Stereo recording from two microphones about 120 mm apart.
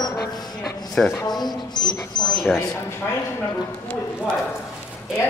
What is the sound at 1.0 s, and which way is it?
Speech, 10° left (ahead or behind).